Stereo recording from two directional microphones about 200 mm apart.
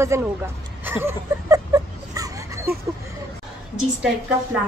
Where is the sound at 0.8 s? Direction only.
10° right (ahead or behind).